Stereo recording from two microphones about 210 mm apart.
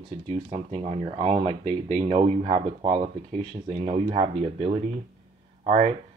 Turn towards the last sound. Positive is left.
turn(degrees=-35)  # may be behind; listen again after turning